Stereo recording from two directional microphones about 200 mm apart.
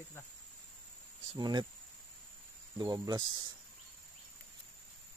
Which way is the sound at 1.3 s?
20° right (ahead or behind).